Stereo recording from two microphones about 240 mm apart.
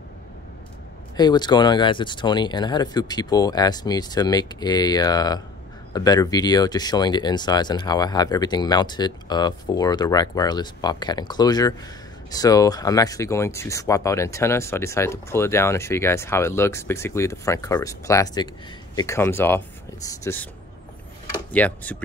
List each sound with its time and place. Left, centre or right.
1.1 s speech: centre
21.5 s speech: centre